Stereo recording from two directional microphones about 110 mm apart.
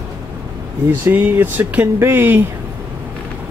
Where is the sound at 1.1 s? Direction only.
20° right (ahead or behind).